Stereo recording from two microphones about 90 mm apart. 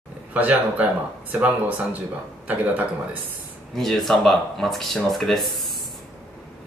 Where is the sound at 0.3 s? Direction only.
15° right (ahead or behind).